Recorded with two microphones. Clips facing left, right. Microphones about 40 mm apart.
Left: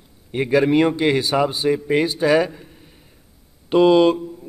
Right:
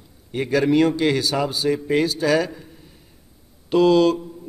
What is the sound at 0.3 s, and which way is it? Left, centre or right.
A man's voice, centre.